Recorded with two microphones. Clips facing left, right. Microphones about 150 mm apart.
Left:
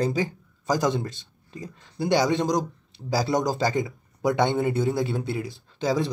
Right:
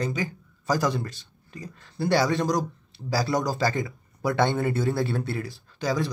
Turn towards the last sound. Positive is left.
turn(degrees=25)  # may be behind; listen again after turning